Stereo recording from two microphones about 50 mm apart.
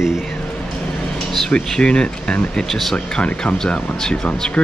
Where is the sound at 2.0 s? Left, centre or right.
Left.